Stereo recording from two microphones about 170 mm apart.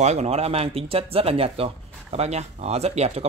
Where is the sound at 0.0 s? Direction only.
40° right (ahead or behind).